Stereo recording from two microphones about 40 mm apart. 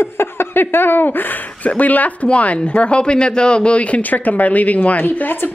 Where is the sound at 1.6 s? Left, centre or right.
Left.